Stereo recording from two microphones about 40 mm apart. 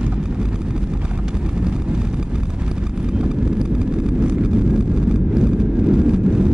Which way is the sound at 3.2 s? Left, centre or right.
Right.